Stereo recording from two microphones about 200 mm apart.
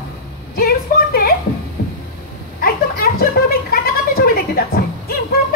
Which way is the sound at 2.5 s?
50° left (ahead or behind).